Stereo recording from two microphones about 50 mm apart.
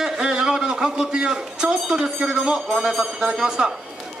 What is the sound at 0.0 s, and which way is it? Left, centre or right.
A man's voice, centre.